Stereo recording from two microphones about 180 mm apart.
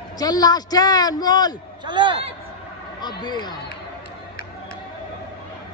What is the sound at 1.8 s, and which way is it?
Speech, 25° right (ahead or behind).